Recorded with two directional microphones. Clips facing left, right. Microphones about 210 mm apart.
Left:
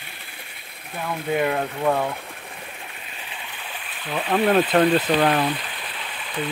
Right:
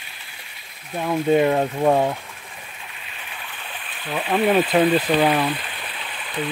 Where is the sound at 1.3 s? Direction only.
25° right (ahead or behind).